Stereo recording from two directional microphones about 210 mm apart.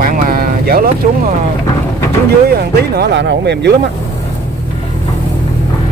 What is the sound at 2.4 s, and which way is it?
Speech, 50° right (ahead or behind).